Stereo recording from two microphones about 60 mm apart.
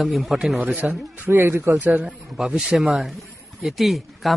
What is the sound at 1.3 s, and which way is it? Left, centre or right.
Speech, right.